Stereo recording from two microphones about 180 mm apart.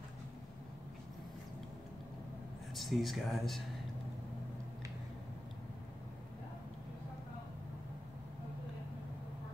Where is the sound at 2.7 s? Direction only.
Centre (ahead or behind).